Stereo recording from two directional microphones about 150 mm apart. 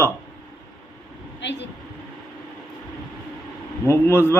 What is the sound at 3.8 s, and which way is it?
Speech, 15° left (ahead or behind).